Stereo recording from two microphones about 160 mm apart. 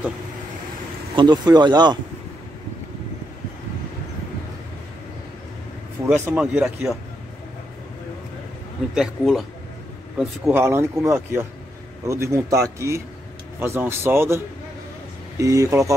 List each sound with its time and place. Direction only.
1.1 s speech: 25° right (ahead or behind)
6.0 s speech: 10° right (ahead or behind)
8.9 s a man's voice: centre (ahead or behind)
10.6 s speech: 15° right (ahead or behind)